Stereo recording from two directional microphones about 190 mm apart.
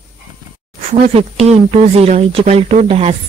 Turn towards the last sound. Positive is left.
turn(degrees=-35)  # may be behind; listen again after turning